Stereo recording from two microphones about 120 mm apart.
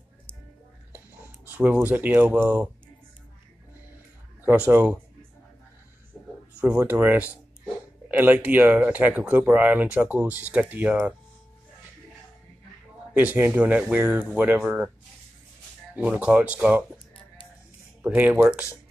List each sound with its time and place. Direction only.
0.9 s speech: 15° right (ahead or behind)
4.4 s speech: 20° right (ahead or behind)
6.1 s a sound: centre (ahead or behind)
6.9 s speech: 15° right (ahead or behind)
13.1 s speech: 15° right (ahead or behind)
15.9 s speech: 10° right (ahead or behind)
17.1 s a sound: 45° left (ahead or behind)
18.0 s speech: 15° right (ahead or behind)